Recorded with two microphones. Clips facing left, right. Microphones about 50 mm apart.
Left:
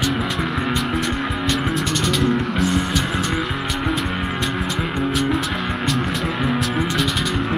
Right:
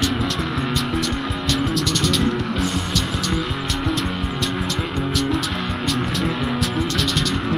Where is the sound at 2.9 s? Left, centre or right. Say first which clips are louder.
Left 2 dB; centre.